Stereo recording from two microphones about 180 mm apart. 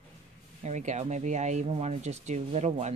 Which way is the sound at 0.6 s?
40° right (ahead or behind).